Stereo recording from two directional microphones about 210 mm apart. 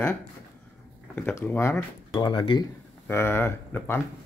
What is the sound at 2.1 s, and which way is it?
Speech, 25° left (ahead or behind).